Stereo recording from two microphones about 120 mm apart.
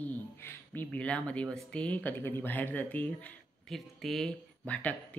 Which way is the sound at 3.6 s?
Centre (ahead or behind).